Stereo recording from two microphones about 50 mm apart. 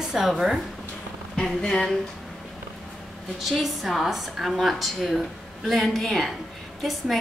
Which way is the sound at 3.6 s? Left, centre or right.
Centre.